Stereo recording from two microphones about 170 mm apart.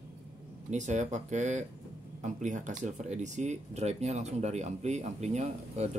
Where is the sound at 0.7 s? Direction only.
45° right (ahead or behind).